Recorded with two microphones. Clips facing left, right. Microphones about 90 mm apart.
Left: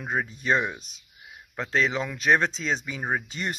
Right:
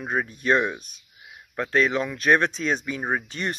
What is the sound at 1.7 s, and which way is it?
Speech, 55° right (ahead or behind).